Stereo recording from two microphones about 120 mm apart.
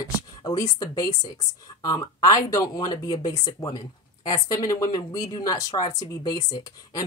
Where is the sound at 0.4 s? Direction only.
30° left (ahead or behind).